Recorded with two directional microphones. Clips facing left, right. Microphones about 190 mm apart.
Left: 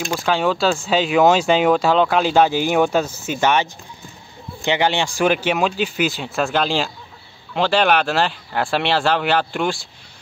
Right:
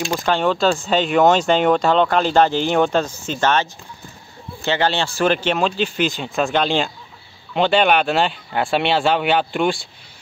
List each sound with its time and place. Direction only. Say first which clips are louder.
0.1 s speech: even; 5° left (ahead or behind)
4.6 s speech: left 1 dB; 15° left (ahead or behind)